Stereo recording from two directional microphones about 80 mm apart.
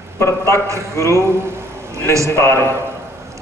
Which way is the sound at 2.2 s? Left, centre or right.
Left.